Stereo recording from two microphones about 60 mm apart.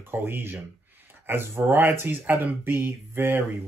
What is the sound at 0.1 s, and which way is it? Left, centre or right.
Speech, right.